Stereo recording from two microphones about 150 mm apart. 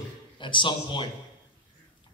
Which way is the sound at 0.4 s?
30° left (ahead or behind).